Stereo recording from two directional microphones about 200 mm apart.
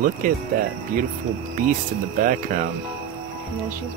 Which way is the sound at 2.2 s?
45° right (ahead or behind).